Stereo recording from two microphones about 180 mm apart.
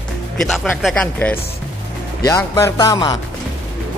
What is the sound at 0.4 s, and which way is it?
A man's voice, centre (ahead or behind).